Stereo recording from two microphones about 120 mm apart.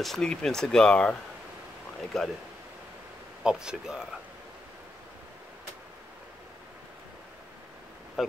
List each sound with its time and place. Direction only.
0.0 s speech: 5° left (ahead or behind)
2.1 s speech: centre (ahead or behind)
3.4 s speech: 5° right (ahead or behind)
8.2 s a sound: centre (ahead or behind)